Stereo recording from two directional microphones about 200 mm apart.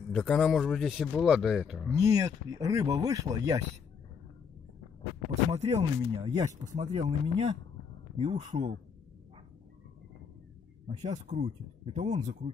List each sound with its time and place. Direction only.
0.1 s a man's voice: 5° left (ahead or behind)
1.9 s speech: 15° right (ahead or behind)
5.3 s speech: 35° right (ahead or behind)
10.9 s speech: 35° right (ahead or behind)